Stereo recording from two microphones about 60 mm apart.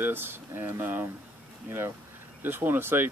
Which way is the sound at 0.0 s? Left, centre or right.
Right.